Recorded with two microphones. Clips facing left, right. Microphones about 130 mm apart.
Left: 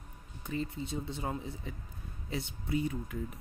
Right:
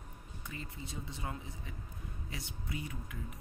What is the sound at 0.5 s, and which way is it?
Speech, 30° left (ahead or behind).